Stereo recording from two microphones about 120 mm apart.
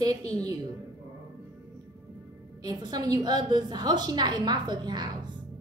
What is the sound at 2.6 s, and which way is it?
A woman's voice, 35° right (ahead or behind).